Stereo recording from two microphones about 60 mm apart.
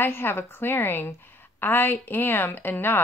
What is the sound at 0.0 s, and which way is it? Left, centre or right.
Speech, left.